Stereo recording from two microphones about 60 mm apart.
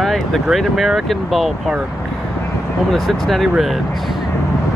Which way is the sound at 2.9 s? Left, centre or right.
Centre.